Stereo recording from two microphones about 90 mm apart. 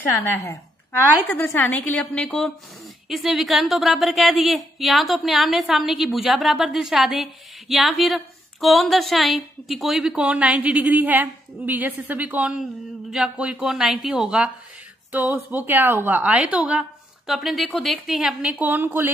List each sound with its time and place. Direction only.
1.3 s a woman's voice: 25° left (ahead or behind)
3.1 s a woman's voice: centre (ahead or behind)
15.1 s a woman's voice: 20° right (ahead or behind)
17.3 s a woman's voice: centre (ahead or behind)
18.5 s a woman's voice: 20° right (ahead or behind)